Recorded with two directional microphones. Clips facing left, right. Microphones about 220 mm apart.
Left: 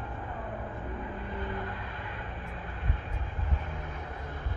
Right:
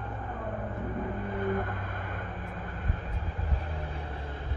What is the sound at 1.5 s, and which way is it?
Vehicle, 50° right (ahead or behind).